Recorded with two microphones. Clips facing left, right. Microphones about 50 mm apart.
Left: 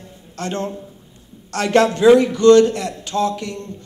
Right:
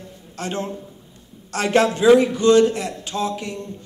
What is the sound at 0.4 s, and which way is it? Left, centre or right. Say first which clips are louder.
A man's voice: left 2 dB; centre.